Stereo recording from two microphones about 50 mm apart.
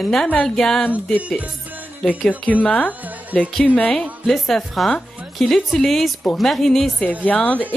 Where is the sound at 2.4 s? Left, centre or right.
Left.